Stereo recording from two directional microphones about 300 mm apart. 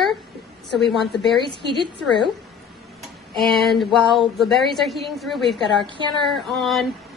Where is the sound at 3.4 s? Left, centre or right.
Centre.